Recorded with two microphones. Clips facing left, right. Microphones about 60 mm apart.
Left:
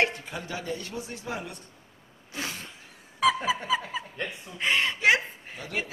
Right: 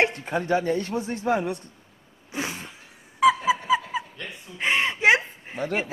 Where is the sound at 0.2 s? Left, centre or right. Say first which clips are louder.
Right 12 dB; right.